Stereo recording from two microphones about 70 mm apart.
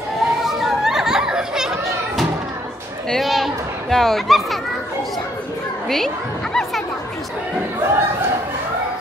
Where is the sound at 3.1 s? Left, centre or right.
Centre.